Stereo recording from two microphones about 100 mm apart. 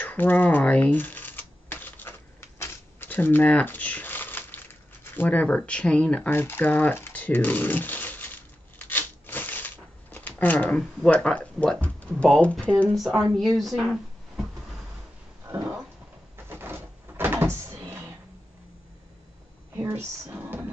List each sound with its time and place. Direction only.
0.0 s typewriter: 20° left (ahead or behind)
2.6 s shuffling cards: 25° left (ahead or behind)
5.1 s a sound: 15° left (ahead or behind)
10.1 s speech: 15° left (ahead or behind)
12.9 s speech: centre (ahead or behind)
16.4 s cupboard open or close: 20° right (ahead or behind)
19.7 s a sound: 25° right (ahead or behind)